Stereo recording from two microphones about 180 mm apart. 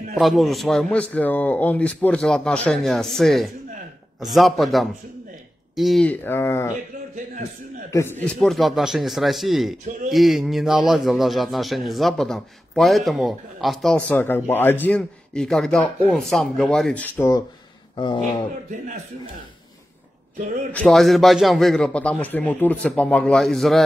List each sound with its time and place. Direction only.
0.1 s a man's voice: centre (ahead or behind)
7.9 s a man's voice: 15° left (ahead or behind)
17.9 s speech: 25° left (ahead or behind)
20.3 s speech: 45° right (ahead or behind)
20.7 s a man's voice: centre (ahead or behind)